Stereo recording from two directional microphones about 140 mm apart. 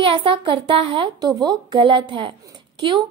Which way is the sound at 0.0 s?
40° right (ahead or behind).